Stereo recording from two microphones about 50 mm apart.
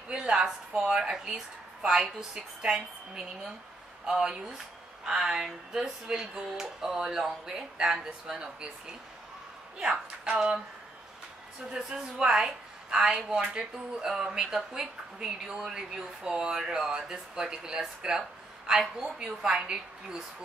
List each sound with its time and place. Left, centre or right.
0.1 s a woman's voice: centre
11.7 s a woman's voice: centre